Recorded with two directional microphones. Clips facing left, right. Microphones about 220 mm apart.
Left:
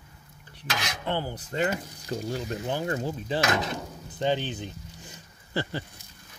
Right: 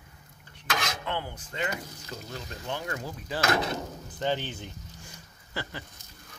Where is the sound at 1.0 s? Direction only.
30° left (ahead or behind).